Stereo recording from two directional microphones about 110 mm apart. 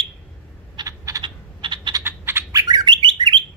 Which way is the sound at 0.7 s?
30° right (ahead or behind).